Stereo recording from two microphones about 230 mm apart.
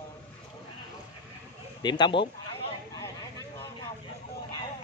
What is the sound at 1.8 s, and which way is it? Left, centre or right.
Speech, centre.